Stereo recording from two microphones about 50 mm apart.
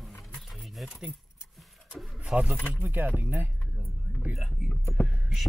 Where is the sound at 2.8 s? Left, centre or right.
Right.